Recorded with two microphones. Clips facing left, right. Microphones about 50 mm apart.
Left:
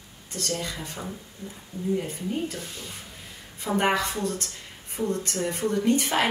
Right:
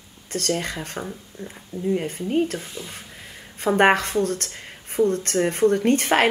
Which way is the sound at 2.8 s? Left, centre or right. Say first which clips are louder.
Right 5 dB; centre.